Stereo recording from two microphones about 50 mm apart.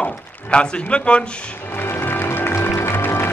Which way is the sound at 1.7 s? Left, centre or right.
Left.